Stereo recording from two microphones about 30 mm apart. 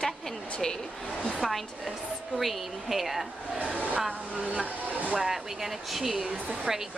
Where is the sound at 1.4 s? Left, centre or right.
Centre.